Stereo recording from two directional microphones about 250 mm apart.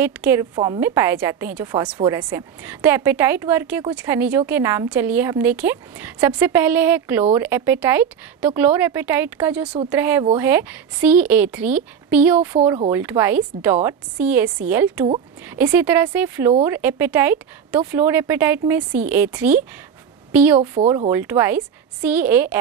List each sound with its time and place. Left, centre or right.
0.0 s speech: centre
20.2 s a sound: centre
20.8 s speech: right
21.1 s speech: centre